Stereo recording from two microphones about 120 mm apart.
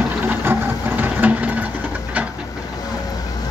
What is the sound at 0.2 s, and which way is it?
Sewing machine, 15° right (ahead or behind).